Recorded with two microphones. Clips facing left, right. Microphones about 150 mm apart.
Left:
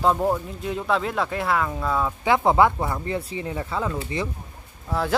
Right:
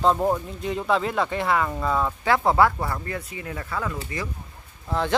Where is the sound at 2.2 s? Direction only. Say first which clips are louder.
Left 2 dB; 20° left (ahead or behind).